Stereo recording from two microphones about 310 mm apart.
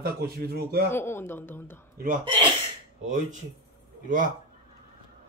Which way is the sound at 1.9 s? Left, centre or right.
Right.